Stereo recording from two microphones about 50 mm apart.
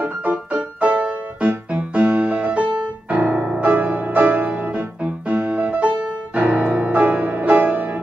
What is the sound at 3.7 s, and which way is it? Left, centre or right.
Music, right.